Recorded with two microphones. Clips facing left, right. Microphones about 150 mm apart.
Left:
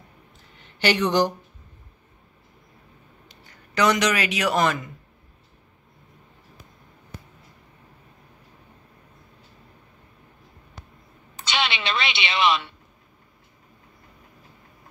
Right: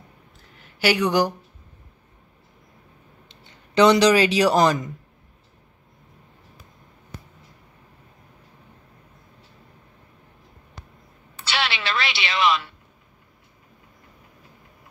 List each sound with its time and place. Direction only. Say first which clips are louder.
0.6 s speech: right 1 dB; 5° right (ahead or behind)
3.3 s a man's voice: even; 25° right (ahead or behind)
11.4 s a sound: even; 20° left (ahead or behind)